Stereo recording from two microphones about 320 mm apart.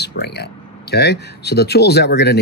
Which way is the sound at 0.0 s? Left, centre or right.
Left.